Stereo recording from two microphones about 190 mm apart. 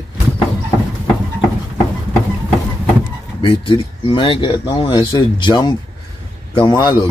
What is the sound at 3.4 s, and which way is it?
Speech, 25° left (ahead or behind).